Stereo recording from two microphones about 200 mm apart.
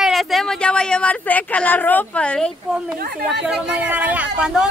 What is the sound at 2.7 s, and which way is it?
Speech, 5° right (ahead or behind).